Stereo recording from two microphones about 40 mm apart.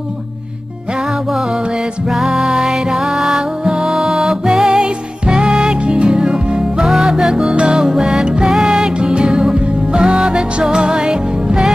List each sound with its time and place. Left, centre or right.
2.0 s music: centre
7.5 s music: right
7.8 s music: centre
8.6 s music: centre
9.0 s music: right